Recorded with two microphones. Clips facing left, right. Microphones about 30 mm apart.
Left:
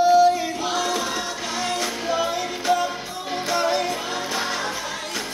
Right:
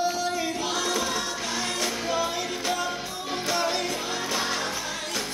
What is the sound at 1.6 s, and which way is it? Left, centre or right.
Music, centre.